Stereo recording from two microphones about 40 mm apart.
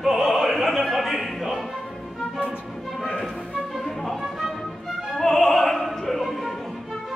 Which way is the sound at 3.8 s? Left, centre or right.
Centre.